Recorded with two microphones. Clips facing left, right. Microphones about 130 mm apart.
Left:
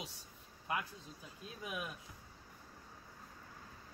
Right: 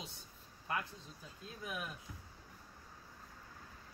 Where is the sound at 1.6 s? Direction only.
15° left (ahead or behind).